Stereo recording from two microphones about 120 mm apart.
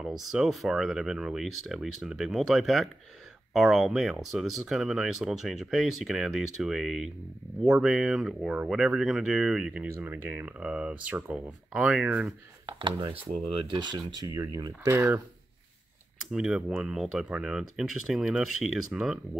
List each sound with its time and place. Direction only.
0.3 s speech: centre (ahead or behind)
9.8 s speech: 20° right (ahead or behind)
12.6 s speech: 40° right (ahead or behind)
16.3 s speech: 5° right (ahead or behind)